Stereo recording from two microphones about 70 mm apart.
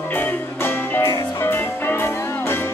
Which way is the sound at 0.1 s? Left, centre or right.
Left.